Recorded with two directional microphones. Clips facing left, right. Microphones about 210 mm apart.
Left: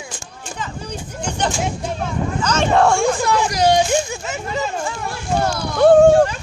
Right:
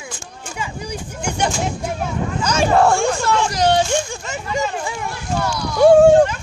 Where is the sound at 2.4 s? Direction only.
10° right (ahead or behind).